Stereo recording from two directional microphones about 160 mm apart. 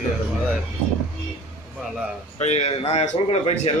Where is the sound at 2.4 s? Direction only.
40° left (ahead or behind).